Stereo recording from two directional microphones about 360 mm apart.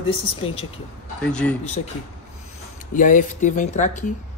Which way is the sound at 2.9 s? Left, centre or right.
Left.